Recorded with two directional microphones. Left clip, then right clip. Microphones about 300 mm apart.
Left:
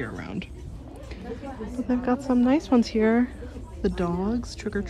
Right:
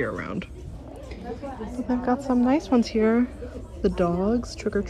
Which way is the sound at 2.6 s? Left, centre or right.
Centre.